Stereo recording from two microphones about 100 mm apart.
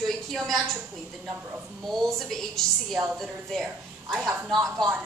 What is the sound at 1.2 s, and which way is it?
Speech, 15° right (ahead or behind).